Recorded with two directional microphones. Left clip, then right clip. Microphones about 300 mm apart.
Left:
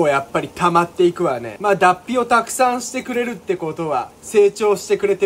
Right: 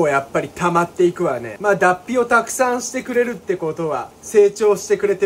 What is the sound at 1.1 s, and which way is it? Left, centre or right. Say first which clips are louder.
Speech: left 1 dB; centre.